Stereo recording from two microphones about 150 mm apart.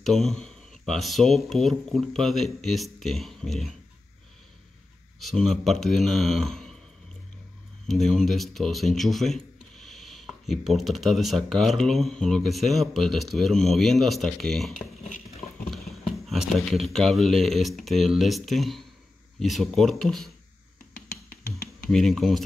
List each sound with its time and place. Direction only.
0.0 s speech: centre (ahead or behind)
5.2 s speech: 5° left (ahead or behind)
7.9 s speech: 5° left (ahead or behind)
21.1 s music: 80° left
21.9 s speech: centre (ahead or behind)